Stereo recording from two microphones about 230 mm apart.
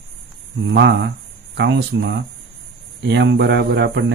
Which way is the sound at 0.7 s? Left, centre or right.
Right.